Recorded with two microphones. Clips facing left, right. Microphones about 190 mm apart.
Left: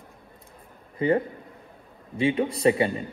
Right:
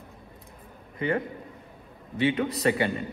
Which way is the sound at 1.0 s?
30° left (ahead or behind).